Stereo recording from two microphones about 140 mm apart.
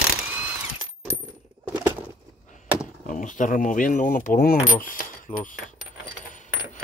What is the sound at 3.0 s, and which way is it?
Speech, 65° left (ahead or behind).